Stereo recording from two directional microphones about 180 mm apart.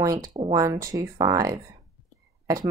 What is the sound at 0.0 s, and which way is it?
Speech, 20° right (ahead or behind).